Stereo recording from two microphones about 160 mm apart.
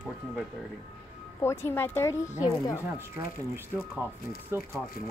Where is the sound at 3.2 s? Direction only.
20° right (ahead or behind).